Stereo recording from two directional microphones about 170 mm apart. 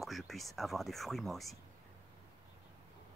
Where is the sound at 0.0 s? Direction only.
Centre (ahead or behind).